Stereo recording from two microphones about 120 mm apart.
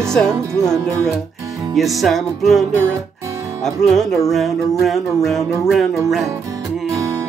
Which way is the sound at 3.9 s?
5° left (ahead or behind).